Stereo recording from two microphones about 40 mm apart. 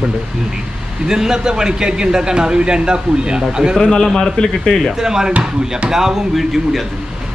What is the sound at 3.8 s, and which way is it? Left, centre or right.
A man's voice, centre.